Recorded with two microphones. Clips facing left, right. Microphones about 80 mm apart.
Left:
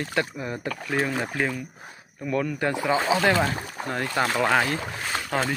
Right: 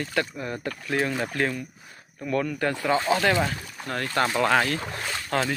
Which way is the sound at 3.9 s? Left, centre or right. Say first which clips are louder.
Even; centre.